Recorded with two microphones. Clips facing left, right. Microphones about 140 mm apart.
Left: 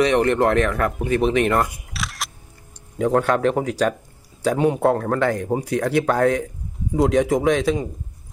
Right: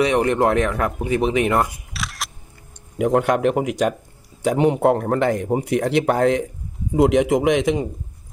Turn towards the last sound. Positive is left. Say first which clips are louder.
# right 1 dB
turn(degrees=-20)  # may be behind; listen again after turning